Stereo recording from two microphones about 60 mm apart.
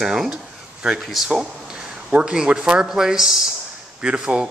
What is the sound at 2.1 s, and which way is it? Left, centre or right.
A man's voice, centre.